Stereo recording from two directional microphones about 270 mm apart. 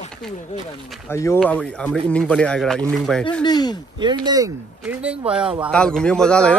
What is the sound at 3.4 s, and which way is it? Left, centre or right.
Speech, centre.